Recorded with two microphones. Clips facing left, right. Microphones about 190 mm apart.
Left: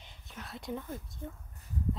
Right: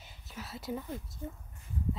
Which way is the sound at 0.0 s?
5° right (ahead or behind).